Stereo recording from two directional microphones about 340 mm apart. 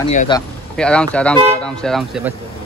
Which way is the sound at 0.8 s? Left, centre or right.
Centre.